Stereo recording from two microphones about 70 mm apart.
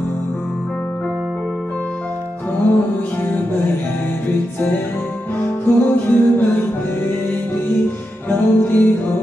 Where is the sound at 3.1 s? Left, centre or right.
Left.